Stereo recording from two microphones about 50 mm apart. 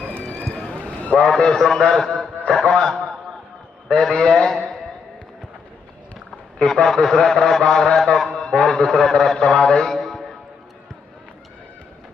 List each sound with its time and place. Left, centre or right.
0.0 s run: centre
0.5 s rowboat: centre
1.1 s a man's voice: centre
6.6 s a man's voice: centre